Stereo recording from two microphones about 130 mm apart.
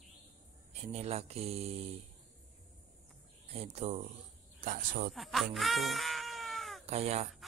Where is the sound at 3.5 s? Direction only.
55° right (ahead or behind).